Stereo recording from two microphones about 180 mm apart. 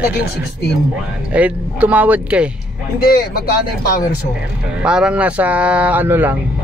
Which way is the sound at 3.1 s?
60° left (ahead or behind).